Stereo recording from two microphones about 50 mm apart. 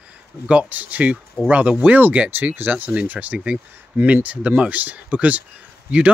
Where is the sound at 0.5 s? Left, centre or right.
Right.